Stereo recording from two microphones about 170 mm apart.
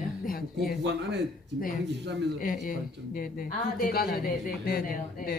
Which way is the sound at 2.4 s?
55° left (ahead or behind).